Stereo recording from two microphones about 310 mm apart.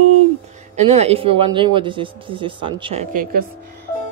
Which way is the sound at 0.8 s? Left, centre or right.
Centre.